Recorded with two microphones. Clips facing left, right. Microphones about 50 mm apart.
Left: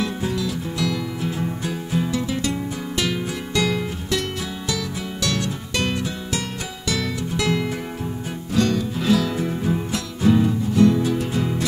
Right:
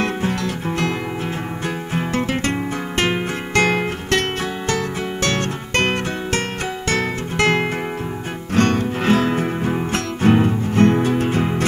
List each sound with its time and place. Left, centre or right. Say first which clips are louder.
0.0 s music: right 3 dB; right
2.0 s music: right 2 dB; right